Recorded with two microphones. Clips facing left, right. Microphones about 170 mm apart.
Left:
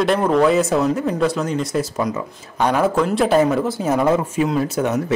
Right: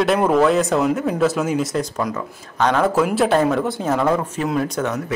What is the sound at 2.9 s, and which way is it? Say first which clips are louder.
A man's voice: left 1 dB; 5° right (ahead or behind).